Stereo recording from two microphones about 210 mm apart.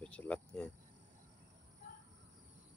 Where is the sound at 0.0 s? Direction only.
5° left (ahead or behind).